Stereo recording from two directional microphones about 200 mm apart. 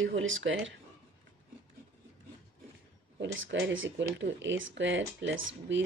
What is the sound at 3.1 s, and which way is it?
Speech, 65° right (ahead or behind).